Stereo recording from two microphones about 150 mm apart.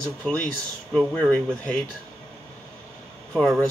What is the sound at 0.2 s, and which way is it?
Speech, 10° left (ahead or behind).